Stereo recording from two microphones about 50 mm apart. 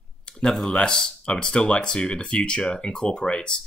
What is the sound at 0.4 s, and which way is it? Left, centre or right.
Speech, centre.